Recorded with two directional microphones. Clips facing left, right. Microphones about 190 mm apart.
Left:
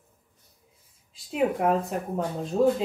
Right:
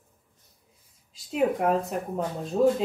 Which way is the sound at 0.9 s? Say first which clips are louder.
Even; centre (ahead or behind).